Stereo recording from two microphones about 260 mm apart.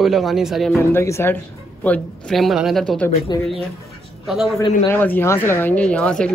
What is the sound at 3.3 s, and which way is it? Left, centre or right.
Speech, centre.